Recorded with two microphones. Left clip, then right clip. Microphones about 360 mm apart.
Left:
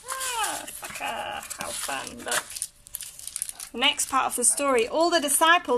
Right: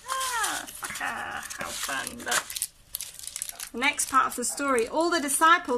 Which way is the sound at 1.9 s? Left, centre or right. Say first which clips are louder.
Right 1 dB; centre.